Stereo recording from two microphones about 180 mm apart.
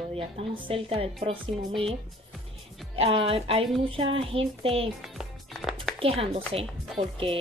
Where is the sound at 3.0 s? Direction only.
30° right (ahead or behind).